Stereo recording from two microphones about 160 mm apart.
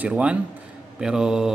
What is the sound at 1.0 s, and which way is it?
Mantra, 5° right (ahead or behind).